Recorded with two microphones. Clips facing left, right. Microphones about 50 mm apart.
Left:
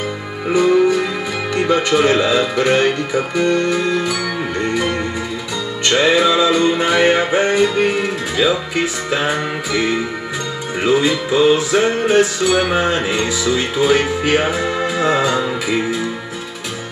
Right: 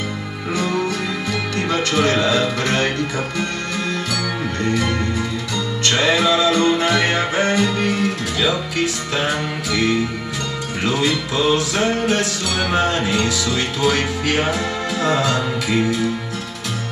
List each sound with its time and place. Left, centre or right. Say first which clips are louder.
0.5 s music: left 8 dB; centre